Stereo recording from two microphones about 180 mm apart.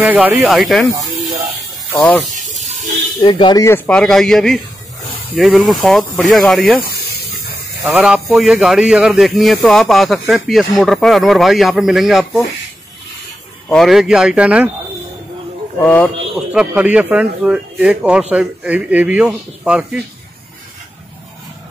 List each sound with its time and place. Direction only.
0.0 s a man's voice: 10° right (ahead or behind)
2.3 s snake: 45° right (ahead or behind)
3.2 s speech: 30° left (ahead or behind)
3.6 s a man's voice: 10° left (ahead or behind)
6.8 s hiss: 60° left (ahead or behind)
7.8 s a man's voice: 5° right (ahead or behind)
13.7 s a man's voice: centre (ahead or behind)
15.8 s a man's voice: 10° left (ahead or behind)
16.5 s a man's voice: 5° right (ahead or behind)